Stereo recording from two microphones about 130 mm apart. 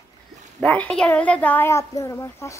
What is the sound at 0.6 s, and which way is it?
Speech, 10° left (ahead or behind).